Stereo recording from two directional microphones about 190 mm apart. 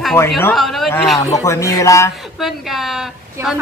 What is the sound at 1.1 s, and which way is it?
Speech, 15° left (ahead or behind).